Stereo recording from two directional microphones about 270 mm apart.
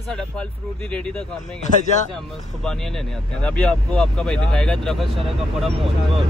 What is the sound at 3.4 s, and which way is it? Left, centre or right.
Speech, centre.